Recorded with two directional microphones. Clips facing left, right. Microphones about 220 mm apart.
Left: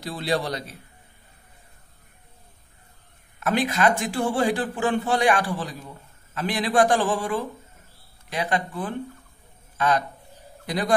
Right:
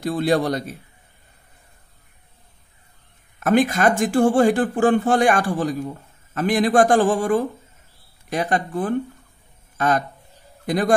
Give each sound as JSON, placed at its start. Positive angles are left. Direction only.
{"t": 0.0, "sound": "speech", "side_deg": -50}
{"t": 3.3, "sound": "a man's voice", "side_deg": -50}